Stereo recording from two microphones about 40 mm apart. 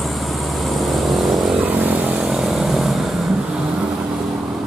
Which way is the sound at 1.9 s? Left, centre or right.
Right.